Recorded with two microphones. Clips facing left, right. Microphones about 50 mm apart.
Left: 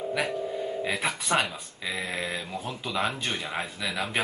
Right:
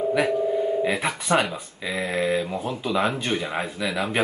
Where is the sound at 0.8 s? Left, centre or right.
Centre.